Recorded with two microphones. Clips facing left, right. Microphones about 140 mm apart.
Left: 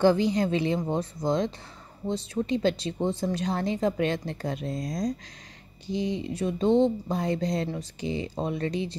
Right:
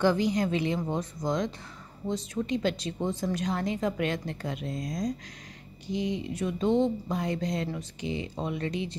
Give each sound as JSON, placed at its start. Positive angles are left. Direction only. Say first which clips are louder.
{"t": 0.0, "sound": "speech", "louder": "left 3 dB", "side_deg": 30}